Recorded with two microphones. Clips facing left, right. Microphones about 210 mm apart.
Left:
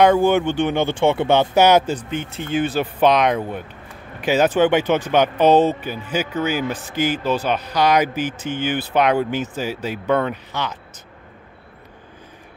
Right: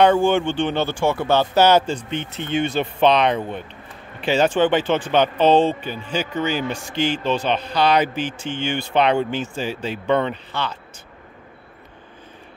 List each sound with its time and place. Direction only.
0.0 s speech: 10° left (ahead or behind)
0.8 s speech: 20° left (ahead or behind)
2.0 s speech: centre (ahead or behind)